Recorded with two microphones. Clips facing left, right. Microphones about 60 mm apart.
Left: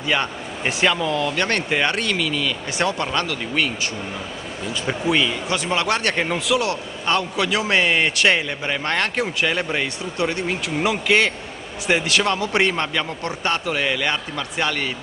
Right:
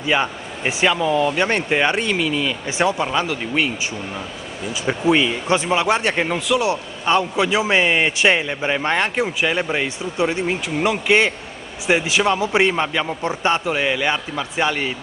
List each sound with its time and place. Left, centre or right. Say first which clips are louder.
0.0 s a man's voice: right 2 dB; centre
4.8 s a man's voice: right 3 dB; centre
6.7 s a man's voice: right 3 dB; centre